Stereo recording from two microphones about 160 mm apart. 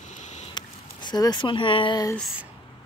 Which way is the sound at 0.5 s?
25° left (ahead or behind).